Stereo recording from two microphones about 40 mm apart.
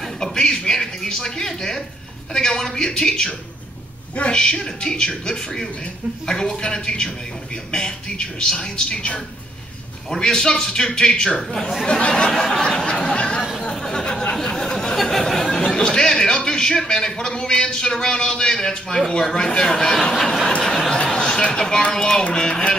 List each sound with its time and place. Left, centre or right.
0.2 s a sound: centre
2.3 s a man's voice: centre
4.4 s a man's voice: centre
10.1 s a man's voice: centre
12.4 s a sound: centre
15.6 s a man's voice: centre
20.6 s a sound: centre
21.9 s a man's voice: centre
22.2 s speech: left